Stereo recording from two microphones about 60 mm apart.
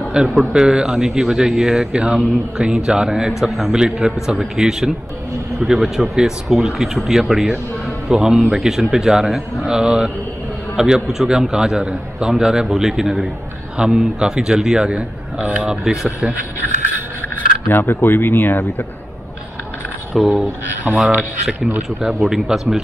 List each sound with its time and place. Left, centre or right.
0.2 s a man's voice: centre
15.8 s a man's voice: centre
17.6 s speech: left
20.2 s speech: centre
20.9 s a man's voice: right
22.0 s a man's voice: centre